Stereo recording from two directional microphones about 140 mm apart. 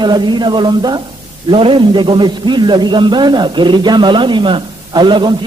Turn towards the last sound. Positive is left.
turn(degrees=-35)  # may be behind; listen again after turning